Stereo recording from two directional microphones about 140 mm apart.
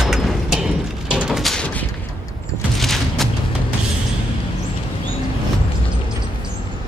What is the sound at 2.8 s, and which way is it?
Music, centre (ahead or behind).